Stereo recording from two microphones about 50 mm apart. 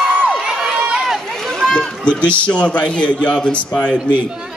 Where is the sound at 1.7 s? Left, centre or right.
Left.